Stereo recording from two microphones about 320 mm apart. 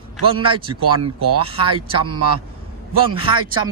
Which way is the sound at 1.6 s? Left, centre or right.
Right.